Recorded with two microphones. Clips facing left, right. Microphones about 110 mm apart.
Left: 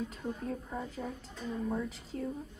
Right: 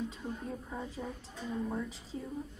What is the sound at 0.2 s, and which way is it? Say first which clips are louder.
A woman's voice: left 3 dB; centre (ahead or behind).